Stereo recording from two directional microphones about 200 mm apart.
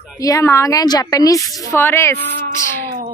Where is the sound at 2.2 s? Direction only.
55° right (ahead or behind).